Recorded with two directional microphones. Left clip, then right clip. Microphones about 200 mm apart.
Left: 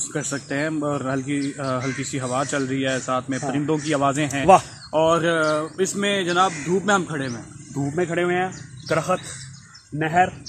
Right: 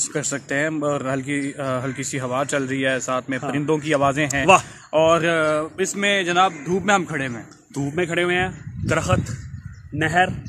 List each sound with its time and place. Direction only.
0.1 s speech: 40° right (ahead or behind)
2.0 s a man's voice: 50° right (ahead or behind)
7.9 s speech: 20° right (ahead or behind)